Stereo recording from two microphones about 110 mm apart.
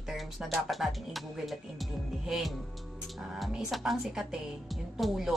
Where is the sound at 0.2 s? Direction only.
Centre (ahead or behind).